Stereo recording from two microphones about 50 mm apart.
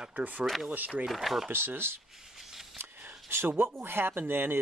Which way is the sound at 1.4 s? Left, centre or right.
Right.